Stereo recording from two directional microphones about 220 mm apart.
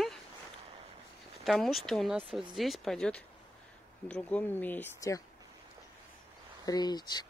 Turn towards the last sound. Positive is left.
turn(degrees=20)  # may be behind; listen again after turning